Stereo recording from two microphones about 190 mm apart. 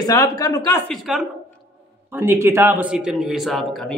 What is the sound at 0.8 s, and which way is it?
Speech, centre (ahead or behind).